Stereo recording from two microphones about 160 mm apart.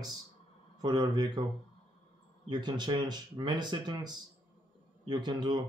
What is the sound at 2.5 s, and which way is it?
Speech, 25° right (ahead or behind).